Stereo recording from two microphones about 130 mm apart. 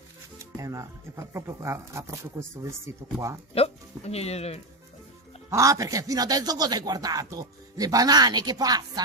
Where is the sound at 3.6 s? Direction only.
50° left (ahead or behind).